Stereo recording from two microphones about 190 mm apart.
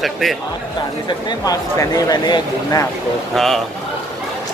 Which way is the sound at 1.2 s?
20° left (ahead or behind).